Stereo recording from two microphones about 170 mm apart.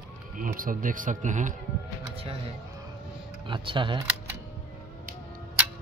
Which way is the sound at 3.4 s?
30° right (ahead or behind).